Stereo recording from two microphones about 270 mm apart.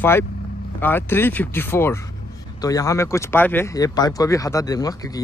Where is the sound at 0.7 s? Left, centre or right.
Centre.